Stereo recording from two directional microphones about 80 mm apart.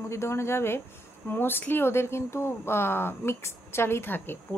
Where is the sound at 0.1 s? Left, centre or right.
Left.